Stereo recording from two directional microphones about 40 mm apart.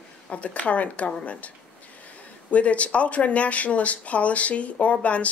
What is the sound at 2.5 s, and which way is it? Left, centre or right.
A woman's voice, left.